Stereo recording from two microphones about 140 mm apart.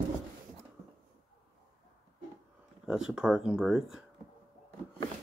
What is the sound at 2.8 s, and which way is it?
Speech, 5° right (ahead or behind).